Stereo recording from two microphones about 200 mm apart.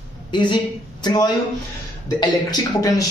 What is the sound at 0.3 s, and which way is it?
Speech, 25° left (ahead or behind).